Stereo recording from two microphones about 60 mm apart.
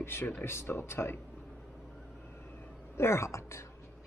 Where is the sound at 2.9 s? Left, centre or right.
Left.